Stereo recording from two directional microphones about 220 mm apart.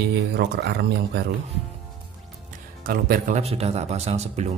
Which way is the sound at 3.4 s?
30° right (ahead or behind).